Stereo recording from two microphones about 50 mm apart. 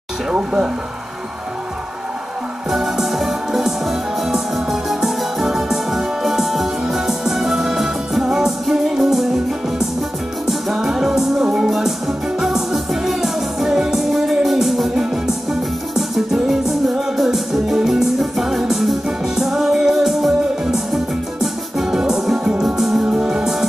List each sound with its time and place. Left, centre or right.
2.7 s music: centre
10.4 s music: centre